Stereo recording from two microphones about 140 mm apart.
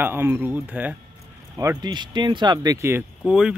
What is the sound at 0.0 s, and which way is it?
Speech, 15° right (ahead or behind).